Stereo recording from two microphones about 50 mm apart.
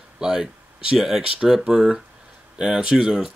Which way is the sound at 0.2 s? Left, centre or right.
Centre.